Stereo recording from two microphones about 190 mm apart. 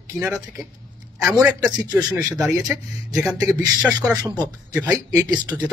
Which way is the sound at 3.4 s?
20° right (ahead or behind).